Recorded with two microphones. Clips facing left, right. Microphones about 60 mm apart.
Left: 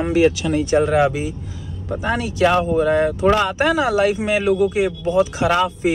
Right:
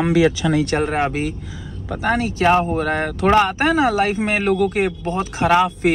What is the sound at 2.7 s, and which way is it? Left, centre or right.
Speech, right.